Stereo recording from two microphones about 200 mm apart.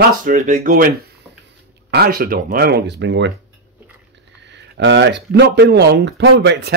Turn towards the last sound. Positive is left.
turn(degrees=-60)  # may be behind; listen again after turning